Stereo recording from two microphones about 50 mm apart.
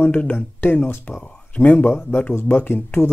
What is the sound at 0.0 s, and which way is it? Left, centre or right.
Speech, left.